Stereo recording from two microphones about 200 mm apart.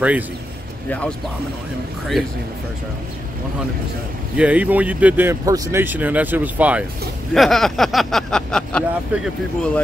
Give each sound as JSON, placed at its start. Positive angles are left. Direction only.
{"t": 0.8, "sound": "speech", "side_deg": 5}
{"t": 4.4, "sound": "speech", "side_deg": -5}